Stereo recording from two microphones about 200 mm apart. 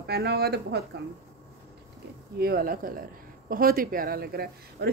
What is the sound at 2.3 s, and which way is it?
Speech, 50° right (ahead or behind).